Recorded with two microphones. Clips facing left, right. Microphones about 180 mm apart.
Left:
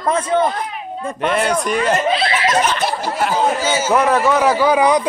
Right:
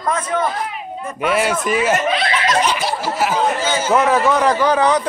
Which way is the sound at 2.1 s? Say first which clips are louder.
Left 1 dB; 25° left (ahead or behind).